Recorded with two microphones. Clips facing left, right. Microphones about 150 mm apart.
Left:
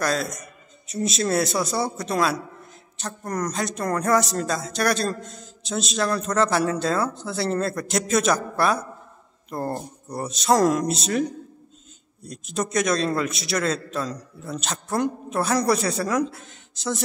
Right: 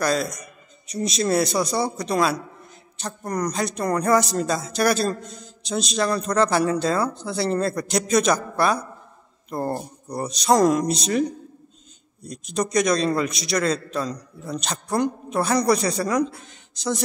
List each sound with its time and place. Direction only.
0.0 s a man's voice: centre (ahead or behind)